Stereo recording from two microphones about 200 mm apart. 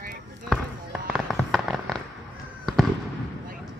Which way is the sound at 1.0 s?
Centre (ahead or behind).